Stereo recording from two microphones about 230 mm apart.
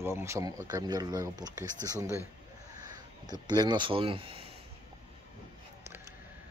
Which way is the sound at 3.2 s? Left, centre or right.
Centre.